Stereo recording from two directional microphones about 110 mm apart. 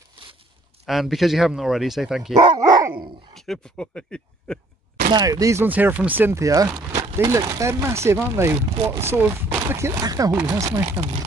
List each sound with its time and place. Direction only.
0.8 s speech: centre (ahead or behind)
3.3 s speech: 5° left (ahead or behind)
5.1 s speech: 35° right (ahead or behind)
5.7 s speech: 15° right (ahead or behind)
6.3 s speech: 30° right (ahead or behind)